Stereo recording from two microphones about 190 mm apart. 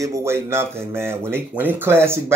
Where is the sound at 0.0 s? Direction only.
15° right (ahead or behind).